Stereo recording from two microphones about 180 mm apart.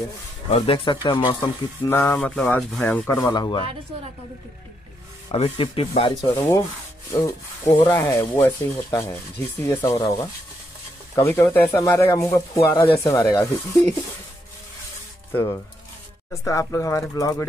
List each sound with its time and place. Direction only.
0.5 s speech: 30° left (ahead or behind)
1.9 s rub: 10° left (ahead or behind)
5.3 s speech: 30° left (ahead or behind)
6.3 s rub: 15° left (ahead or behind)
16.4 s rub: 15° left (ahead or behind)